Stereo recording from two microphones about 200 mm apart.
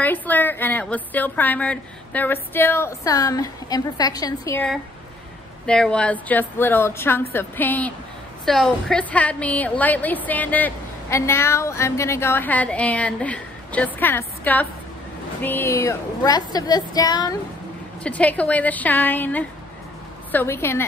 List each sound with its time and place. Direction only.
0.0 s a woman's voice: 10° left (ahead or behind)
5.7 s a woman's voice: 5° left (ahead or behind); by 17.4 s 20° left (ahead or behind)
18.0 s a woman's voice: 5° left (ahead or behind)